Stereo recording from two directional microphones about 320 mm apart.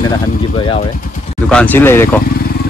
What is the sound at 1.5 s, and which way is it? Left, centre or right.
Speech, centre.